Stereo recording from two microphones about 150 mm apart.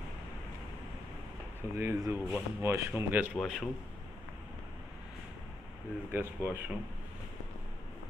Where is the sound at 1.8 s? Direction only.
15° right (ahead or behind).